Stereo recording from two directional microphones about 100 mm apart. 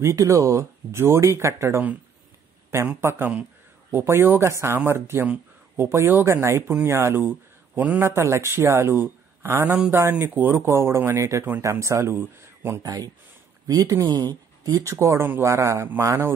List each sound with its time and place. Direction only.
0.0 s speech: 30° right (ahead or behind)
3.0 s speech: 25° right (ahead or behind)